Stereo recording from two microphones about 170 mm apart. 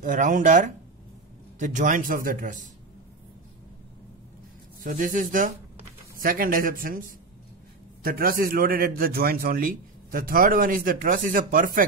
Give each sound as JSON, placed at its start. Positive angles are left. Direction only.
{"t": 0.0, "sound": "a man's voice", "side_deg": -50}
{"t": 4.8, "sound": "a man's voice", "side_deg": -50}